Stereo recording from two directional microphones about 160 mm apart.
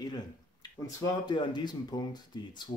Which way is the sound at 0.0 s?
25° left (ahead or behind).